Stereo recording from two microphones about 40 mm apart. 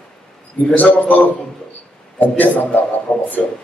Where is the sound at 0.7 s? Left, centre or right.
Left.